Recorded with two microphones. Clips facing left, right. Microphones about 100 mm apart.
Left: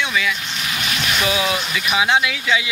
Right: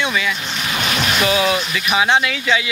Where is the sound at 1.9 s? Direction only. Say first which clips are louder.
Right 2 dB; 5° left (ahead or behind).